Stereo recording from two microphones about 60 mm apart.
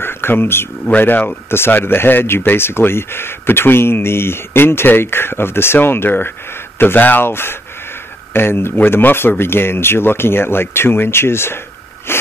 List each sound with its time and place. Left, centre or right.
0.0 s a sound: left
0.8 s speech: left
12.1 s wheeze: left